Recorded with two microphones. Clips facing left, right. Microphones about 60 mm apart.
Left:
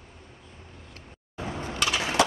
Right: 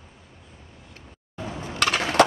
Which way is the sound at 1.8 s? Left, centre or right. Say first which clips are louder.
Right 5 dB; right.